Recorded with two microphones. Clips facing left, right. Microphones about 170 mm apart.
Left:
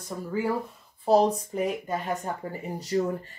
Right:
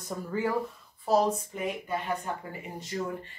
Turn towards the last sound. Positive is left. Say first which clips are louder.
# left 7 dB
turn(degrees=40)  # may be behind; listen again after turning